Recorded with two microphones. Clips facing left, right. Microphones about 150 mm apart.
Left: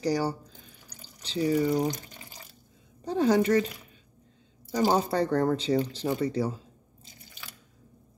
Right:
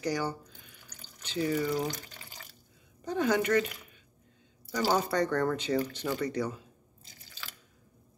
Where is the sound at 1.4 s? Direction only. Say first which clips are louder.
Left 5 dB; 25° left (ahead or behind).